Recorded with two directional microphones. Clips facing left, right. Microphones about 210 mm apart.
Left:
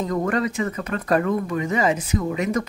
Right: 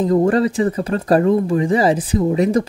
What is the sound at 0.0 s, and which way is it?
Speech, 30° right (ahead or behind).